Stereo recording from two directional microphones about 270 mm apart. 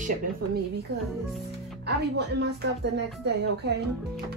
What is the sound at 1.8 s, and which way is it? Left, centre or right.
Speech, right.